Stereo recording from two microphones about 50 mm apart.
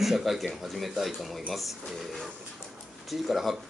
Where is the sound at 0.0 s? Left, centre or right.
Centre.